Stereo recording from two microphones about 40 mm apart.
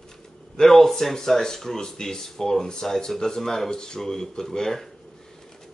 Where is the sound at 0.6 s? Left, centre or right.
Centre.